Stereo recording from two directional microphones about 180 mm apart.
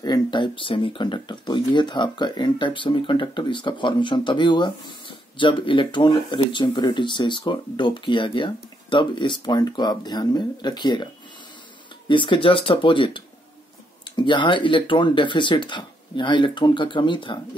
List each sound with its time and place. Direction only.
0.0 s speech: 25° left (ahead or behind)
12.1 s speech: 25° left (ahead or behind)